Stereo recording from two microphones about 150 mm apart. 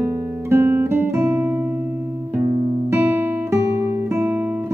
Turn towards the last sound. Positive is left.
turn(degrees=-15)  # may be behind; listen again after turning